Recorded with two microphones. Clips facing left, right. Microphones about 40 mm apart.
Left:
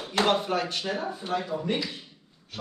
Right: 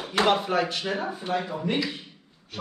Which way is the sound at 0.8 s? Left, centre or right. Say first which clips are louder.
Right 2 dB; right.